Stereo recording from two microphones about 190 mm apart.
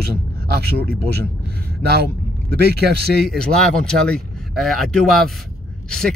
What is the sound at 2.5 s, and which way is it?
Speech, 55° right (ahead or behind).